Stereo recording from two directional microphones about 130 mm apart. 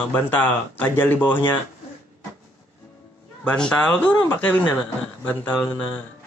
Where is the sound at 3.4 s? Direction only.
5° left (ahead or behind).